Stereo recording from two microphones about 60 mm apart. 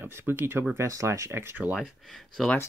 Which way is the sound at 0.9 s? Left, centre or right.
Right.